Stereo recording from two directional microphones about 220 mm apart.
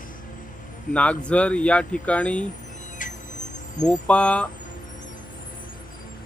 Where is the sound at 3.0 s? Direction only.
35° left (ahead or behind).